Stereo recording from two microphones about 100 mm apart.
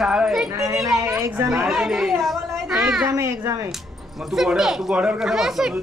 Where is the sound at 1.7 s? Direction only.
5° right (ahead or behind).